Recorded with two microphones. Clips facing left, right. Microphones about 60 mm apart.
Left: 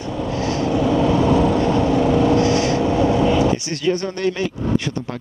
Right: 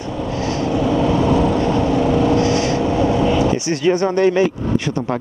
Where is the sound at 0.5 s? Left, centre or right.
Right.